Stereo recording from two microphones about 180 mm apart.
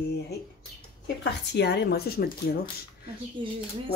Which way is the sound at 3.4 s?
30° right (ahead or behind).